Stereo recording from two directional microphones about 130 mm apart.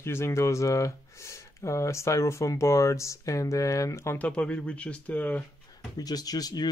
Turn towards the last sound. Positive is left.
turn(degrees=30)  # may be behind; listen again after turning